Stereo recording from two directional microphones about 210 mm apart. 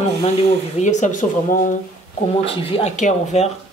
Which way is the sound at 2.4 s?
25° left (ahead or behind).